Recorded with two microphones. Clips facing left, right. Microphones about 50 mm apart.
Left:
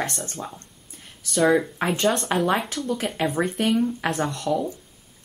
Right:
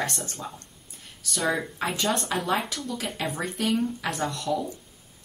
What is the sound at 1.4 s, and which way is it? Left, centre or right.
Speech, centre.